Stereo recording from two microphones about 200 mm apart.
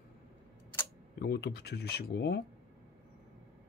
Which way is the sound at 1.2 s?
50° left (ahead or behind).